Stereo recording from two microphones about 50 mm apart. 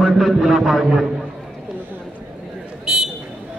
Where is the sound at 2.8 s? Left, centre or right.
Centre.